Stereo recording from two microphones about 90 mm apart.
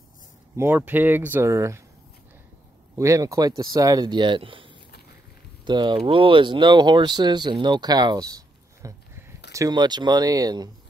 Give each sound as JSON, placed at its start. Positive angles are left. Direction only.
{"t": 0.6, "sound": "speech", "side_deg": -20}
{"t": 3.0, "sound": "speech", "side_deg": -35}
{"t": 4.1, "sound": "speech", "side_deg": -60}
{"t": 5.7, "sound": "speech", "side_deg": -60}
{"t": 9.1, "sound": "a sound", "side_deg": -35}
{"t": 9.7, "sound": "speech", "side_deg": -55}